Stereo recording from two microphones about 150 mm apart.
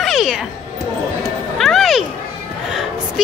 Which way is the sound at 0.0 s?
Centre (ahead or behind).